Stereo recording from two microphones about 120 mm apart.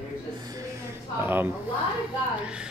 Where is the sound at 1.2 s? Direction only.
20° right (ahead or behind).